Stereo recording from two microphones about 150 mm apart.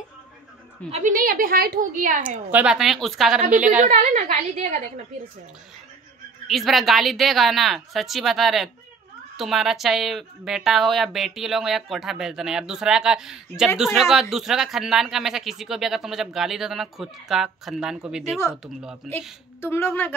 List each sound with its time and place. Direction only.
0.9 s a woman's voice: 60° right (ahead or behind)
2.5 s a woman's voice: 5° right (ahead or behind)
3.6 s a woman's voice: 60° right (ahead or behind)
6.4 s a woman's voice: centre (ahead or behind)
19.6 s speech: 15° left (ahead or behind)